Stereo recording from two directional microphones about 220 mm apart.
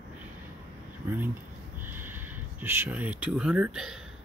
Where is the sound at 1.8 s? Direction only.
10° right (ahead or behind).